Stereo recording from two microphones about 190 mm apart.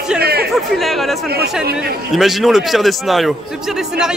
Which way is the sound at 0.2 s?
55° right (ahead or behind).